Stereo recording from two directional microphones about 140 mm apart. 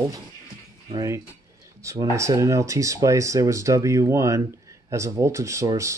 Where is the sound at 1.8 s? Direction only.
20° right (ahead or behind).